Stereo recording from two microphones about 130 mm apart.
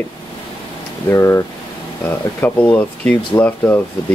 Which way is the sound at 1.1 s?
20° left (ahead or behind).